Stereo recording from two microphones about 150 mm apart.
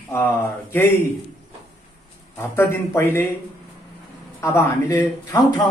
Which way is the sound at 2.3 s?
15° left (ahead or behind).